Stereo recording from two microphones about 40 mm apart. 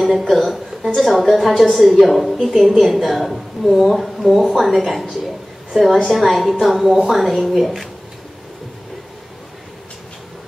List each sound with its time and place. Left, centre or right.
0.0 s a woman's voice: centre